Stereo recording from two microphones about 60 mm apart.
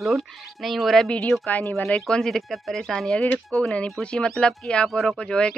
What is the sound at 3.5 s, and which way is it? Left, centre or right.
Speech, left.